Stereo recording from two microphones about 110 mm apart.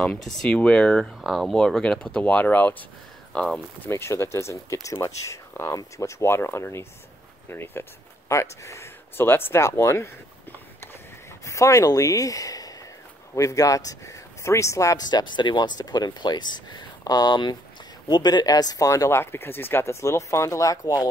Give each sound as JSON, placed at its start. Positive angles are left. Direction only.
{"t": 0.0, "sound": "speech", "side_deg": 5}
{"t": 3.8, "sound": "speech", "side_deg": 25}
{"t": 11.4, "sound": "speech", "side_deg": 30}